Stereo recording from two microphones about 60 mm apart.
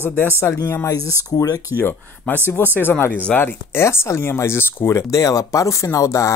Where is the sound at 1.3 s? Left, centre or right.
Left.